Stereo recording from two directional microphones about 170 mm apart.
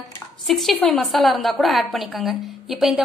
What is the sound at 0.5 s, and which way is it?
A woman's voice, centre (ahead or behind).